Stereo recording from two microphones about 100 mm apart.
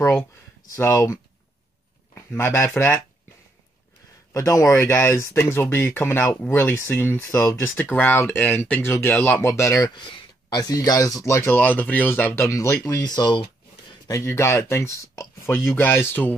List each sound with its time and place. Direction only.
0.7 s speech: 30° left (ahead or behind)
2.3 s speech: 25° left (ahead or behind)
4.3 s speech: 30° left (ahead or behind)
9.9 s a sound: 50° left (ahead or behind)
10.6 s speech: 35° left (ahead or behind); by 12.4 s 20° left (ahead or behind)
12.4 s speech: 30° left (ahead or behind)
12.8 s speech: 40° left (ahead or behind)
14.0 s speech: 30° left (ahead or behind)